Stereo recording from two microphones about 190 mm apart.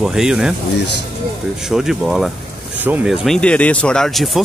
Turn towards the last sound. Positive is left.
turn(degrees=0)  # may be behind; listen again after turning